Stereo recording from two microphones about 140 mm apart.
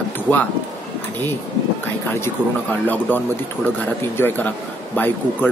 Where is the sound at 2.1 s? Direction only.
15° left (ahead or behind).